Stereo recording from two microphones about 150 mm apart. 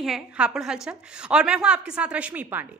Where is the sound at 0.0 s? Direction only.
5° right (ahead or behind).